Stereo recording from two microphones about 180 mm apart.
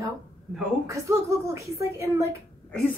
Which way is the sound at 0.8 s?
15° right (ahead or behind).